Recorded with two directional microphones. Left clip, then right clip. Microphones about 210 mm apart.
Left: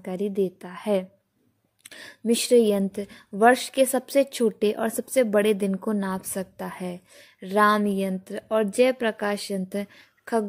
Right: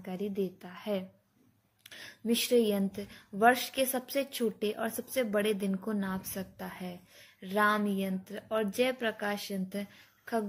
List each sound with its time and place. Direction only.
0.0 s speech: 50° left (ahead or behind)